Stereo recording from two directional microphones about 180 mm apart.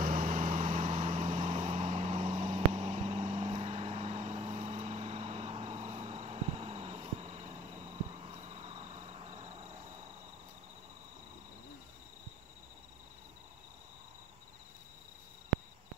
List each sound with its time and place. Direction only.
0.0 s vehicle: 50° right (ahead or behind); by 9.8 s 30° right (ahead or behind)